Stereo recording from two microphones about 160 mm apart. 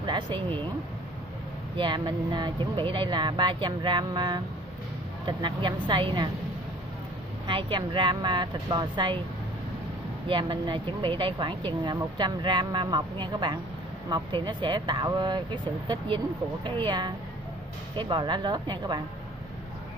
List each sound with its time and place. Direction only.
0.0 s a sound: 30° right (ahead or behind)
1.8 s speech: 30° right (ahead or behind)
7.4 s speech: 30° right (ahead or behind)
10.2 s speech: 30° right (ahead or behind)